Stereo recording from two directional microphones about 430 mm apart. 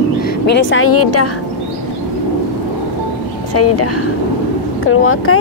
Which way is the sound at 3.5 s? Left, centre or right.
Left.